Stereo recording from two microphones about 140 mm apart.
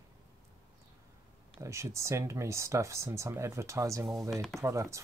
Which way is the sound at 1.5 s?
20° right (ahead or behind).